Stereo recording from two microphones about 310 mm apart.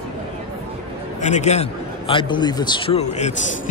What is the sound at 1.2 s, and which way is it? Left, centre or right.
A man's voice, left.